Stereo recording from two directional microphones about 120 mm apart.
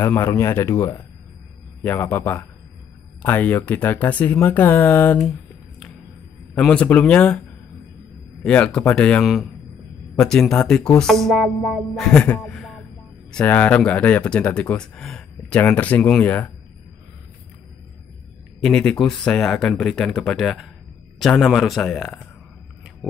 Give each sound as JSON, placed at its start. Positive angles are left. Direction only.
{"t": 0.2, "sound": "speech", "side_deg": 20}
{"t": 6.7, "sound": "speech", "side_deg": 10}
{"t": 8.5, "sound": "speech", "side_deg": 10}
{"t": 9.2, "sound": "speech", "side_deg": 0}
{"t": 18.6, "sound": "speech", "side_deg": 5}